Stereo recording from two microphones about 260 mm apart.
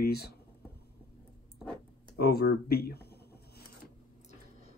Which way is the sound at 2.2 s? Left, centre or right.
Left.